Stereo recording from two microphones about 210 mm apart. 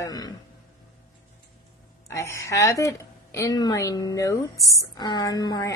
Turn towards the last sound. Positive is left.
turn(degrees=20)  # may be behind; listen again after turning